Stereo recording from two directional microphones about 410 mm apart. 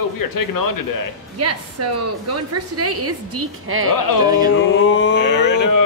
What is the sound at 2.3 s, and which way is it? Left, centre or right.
A woman's voice, right.